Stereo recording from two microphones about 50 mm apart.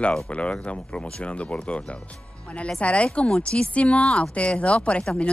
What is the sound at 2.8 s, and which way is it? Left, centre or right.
Speech, left.